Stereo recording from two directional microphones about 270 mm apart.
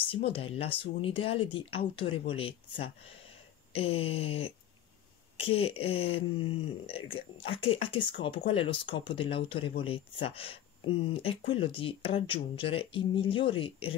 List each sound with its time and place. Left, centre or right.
0.3 s speech: left